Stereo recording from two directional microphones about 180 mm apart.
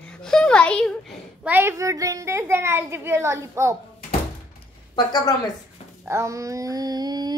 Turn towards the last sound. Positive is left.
turn(degrees=-20)  # may be behind; listen again after turning